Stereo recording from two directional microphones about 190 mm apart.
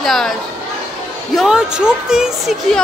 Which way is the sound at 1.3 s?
Centre (ahead or behind).